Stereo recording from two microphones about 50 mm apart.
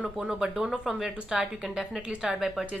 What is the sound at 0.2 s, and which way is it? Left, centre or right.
A woman's voice, centre.